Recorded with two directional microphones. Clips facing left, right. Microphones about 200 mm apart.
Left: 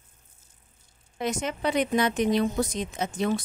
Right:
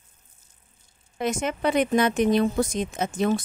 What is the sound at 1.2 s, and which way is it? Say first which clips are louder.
Speech: right 3 dB; 50° right (ahead or behind).